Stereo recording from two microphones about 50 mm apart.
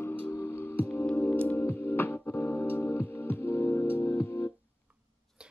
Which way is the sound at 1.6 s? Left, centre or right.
Left.